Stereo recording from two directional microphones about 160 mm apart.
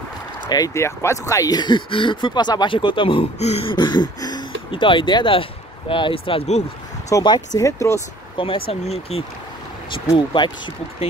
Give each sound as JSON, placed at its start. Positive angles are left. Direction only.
{"t": 0.5, "sound": "speech", "side_deg": 20}
{"t": 7.1, "sound": "speech", "side_deg": 25}
{"t": 8.4, "sound": "speech", "side_deg": 35}
{"t": 10.0, "sound": "speech", "side_deg": 30}